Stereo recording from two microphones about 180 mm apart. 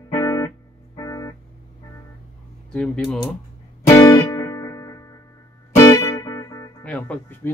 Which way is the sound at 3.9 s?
15° left (ahead or behind).